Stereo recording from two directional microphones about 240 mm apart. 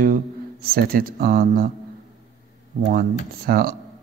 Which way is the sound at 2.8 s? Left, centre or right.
Right.